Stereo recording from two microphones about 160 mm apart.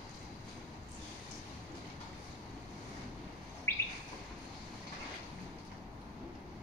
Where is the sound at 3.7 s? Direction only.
15° left (ahead or behind).